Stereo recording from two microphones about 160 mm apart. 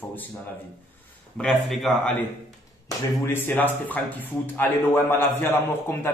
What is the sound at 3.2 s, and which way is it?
A man's voice, 15° left (ahead or behind).